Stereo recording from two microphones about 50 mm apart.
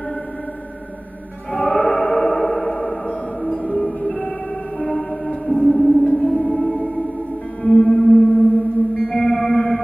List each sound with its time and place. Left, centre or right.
1.5 s choir: centre
3.1 s music: centre
7.6 s music: centre